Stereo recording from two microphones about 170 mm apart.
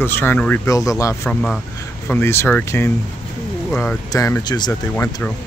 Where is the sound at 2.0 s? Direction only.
15° left (ahead or behind).